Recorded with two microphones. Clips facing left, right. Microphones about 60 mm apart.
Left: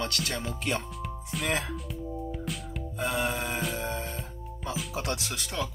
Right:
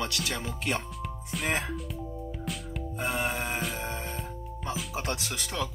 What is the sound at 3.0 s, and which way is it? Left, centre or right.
Music, right.